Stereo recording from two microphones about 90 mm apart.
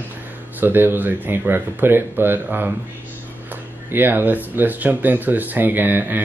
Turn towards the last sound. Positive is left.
turn(degrees=-20)  # may be behind; listen again after turning